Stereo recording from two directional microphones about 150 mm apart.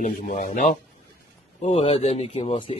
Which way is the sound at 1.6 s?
45° left (ahead or behind).